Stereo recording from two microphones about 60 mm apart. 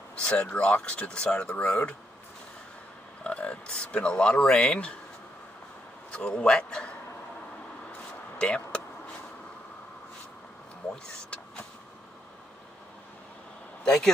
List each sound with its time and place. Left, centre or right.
0.2 s speech: centre
3.3 s speech: centre
6.1 s speech: centre
8.4 s vehicle: centre
13.8 s speech: centre